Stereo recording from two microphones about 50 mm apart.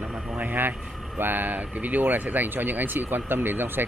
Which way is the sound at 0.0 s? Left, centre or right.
Right.